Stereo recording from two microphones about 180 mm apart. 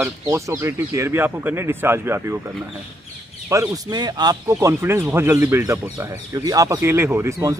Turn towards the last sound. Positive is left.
turn(degrees=-15)  # may be behind; listen again after turning